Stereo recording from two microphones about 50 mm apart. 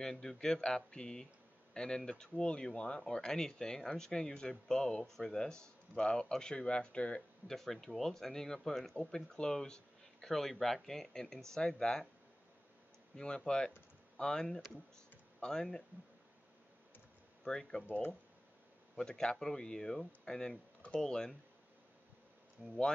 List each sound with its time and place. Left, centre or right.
0.0 s speech: centre
7.2 s speech: centre
13.2 s speech: centre
17.5 s speech: centre
18.9 s speech: centre
22.6 s speech: right